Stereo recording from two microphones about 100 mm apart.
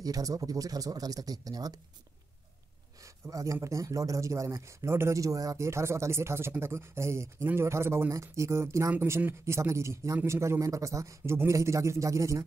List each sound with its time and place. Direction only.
0.0 s speech: 35° right (ahead or behind)
3.0 s a sound: 35° right (ahead or behind)
3.6 s speech: 30° right (ahead or behind)